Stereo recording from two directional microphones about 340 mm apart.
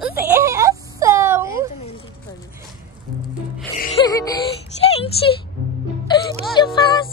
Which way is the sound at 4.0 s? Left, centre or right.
Centre.